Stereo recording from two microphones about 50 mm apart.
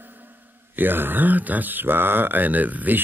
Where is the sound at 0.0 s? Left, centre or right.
Right.